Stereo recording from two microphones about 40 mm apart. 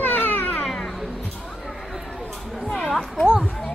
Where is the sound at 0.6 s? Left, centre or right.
Centre.